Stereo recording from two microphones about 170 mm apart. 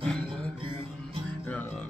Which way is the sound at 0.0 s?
5° left (ahead or behind).